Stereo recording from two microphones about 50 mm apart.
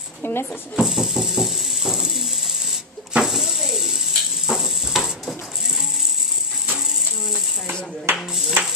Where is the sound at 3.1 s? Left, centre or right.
Centre.